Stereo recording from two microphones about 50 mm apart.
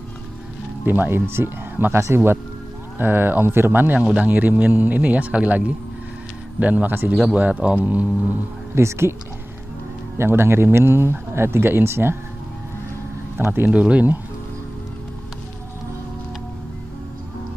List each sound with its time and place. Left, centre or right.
0.8 s speech: right
3.0 s speech: right
4.0 s a man's voice: right
8.7 s speech: right
10.1 s speech: right
13.4 s speech: right
13.7 s speech: right